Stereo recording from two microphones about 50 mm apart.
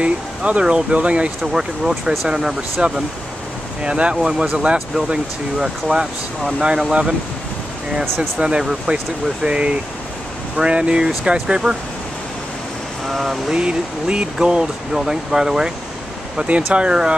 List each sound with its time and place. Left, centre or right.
0.0 s speech: right
8.2 s speech: right
13.0 s a sound: centre
13.5 s speech: centre
16.4 s speech: right